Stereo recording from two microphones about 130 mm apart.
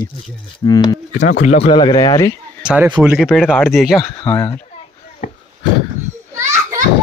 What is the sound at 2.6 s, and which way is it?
Speech, 10° right (ahead or behind).